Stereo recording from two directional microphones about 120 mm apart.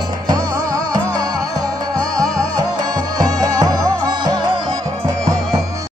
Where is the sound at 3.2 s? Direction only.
30° right (ahead or behind).